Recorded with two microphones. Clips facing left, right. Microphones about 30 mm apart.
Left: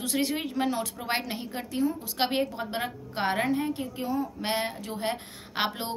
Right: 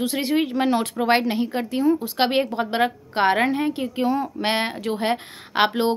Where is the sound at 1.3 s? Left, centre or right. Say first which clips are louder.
Right 10 dB; right.